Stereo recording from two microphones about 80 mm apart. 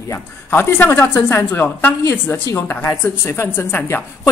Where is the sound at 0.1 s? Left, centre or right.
Left.